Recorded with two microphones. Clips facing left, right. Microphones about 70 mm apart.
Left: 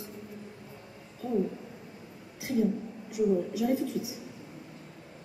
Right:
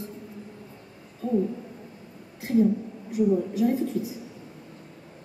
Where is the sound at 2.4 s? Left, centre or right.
Right.